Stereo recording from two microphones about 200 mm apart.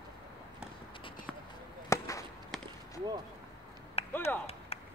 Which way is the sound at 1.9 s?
15° left (ahead or behind).